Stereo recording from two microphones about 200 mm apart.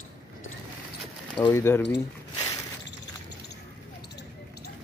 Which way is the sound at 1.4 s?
10° left (ahead or behind).